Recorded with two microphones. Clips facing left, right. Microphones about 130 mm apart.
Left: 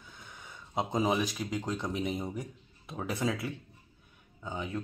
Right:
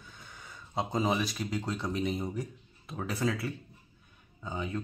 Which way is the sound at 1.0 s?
10° left (ahead or behind).